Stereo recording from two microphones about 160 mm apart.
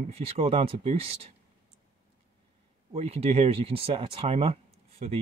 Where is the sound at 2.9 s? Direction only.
40° right (ahead or behind).